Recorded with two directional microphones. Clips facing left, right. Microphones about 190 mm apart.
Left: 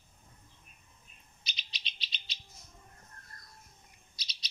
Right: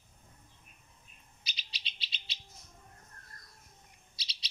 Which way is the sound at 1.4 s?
35° right (ahead or behind).